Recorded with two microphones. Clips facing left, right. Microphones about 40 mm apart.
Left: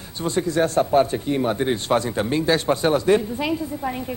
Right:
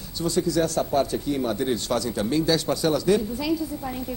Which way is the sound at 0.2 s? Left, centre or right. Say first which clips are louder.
Left 2 dB; left.